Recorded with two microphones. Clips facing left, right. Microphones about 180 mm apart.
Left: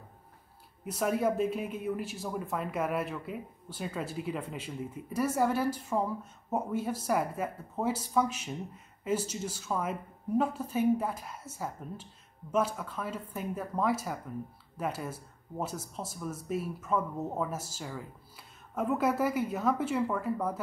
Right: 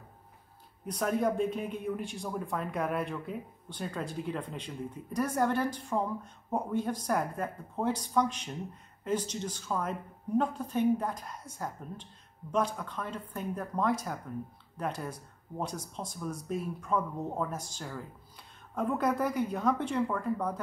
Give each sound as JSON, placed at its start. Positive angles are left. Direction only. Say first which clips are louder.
{"t": 0.8, "sound": "speech", "louder": "even", "side_deg": 5}